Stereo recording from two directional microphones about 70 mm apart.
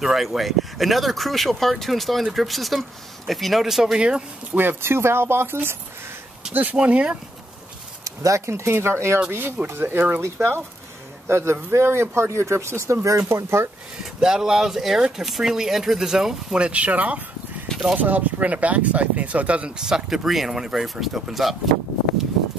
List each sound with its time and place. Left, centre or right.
0.0 s speech: centre
4.6 s a man's voice: right
8.0 s a man's voice: right
14.2 s speech: centre
20.1 s speech: centre